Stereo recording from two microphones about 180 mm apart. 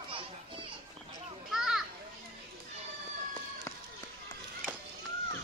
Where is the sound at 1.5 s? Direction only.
5° right (ahead or behind).